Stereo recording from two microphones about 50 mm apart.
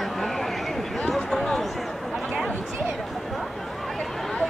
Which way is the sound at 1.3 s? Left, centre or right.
Centre.